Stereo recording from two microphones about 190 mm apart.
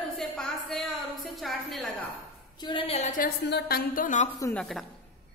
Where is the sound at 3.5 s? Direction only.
60° left (ahead or behind); by 4.3 s 45° left (ahead or behind).